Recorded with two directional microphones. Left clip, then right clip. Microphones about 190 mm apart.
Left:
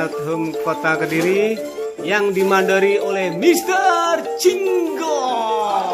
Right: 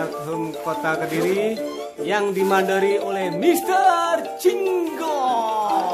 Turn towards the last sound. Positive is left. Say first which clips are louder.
# left 2 dB
turn(degrees=5)  # may be behind; listen again after turning